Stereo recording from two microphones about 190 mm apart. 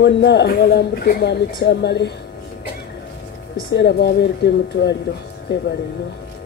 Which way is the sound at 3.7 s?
60° left (ahead or behind).